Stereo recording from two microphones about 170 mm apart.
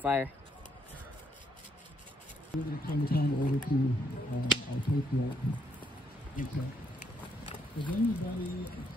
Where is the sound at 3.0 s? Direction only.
65° left (ahead or behind).